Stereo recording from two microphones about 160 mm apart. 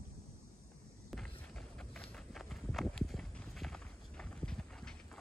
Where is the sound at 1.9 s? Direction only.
Centre (ahead or behind).